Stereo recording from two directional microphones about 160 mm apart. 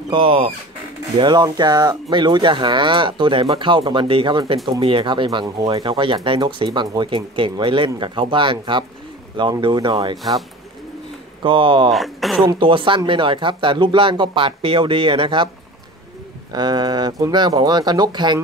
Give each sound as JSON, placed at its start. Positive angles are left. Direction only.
{"t": 0.1, "sound": "speech", "side_deg": -35}
{"t": 11.4, "sound": "speech", "side_deg": -30}
{"t": 11.9, "sound": "speech", "side_deg": 0}
{"t": 12.4, "sound": "speech", "side_deg": -30}
{"t": 16.5, "sound": "speech", "side_deg": -25}